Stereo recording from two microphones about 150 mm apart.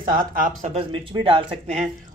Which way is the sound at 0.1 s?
70° right (ahead or behind).